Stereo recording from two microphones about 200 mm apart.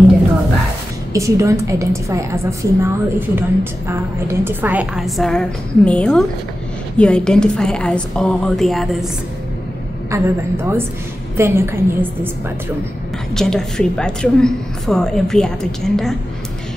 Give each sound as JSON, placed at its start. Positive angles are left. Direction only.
{"t": 1.1, "sound": "a woman's voice", "side_deg": -15}
{"t": 10.1, "sound": "a woman's voice", "side_deg": -10}
{"t": 13.3, "sound": "a woman's voice", "side_deg": 0}